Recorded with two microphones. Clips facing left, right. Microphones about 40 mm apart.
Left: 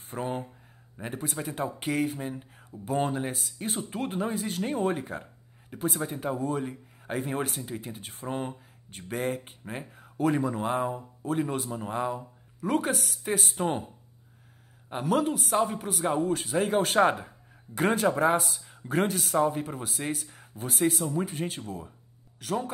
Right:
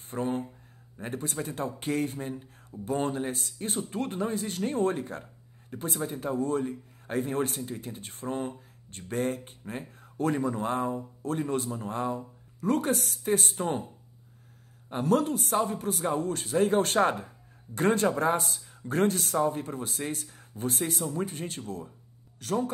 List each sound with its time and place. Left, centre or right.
0.2 s speech: centre
5.1 s speech: centre
14.9 s speech: centre